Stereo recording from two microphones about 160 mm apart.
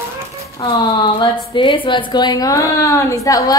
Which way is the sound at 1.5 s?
30° left (ahead or behind).